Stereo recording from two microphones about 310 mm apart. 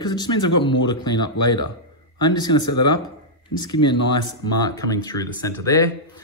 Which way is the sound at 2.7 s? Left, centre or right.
Left.